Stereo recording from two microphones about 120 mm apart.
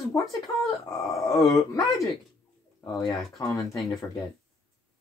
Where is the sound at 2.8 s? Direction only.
30° left (ahead or behind).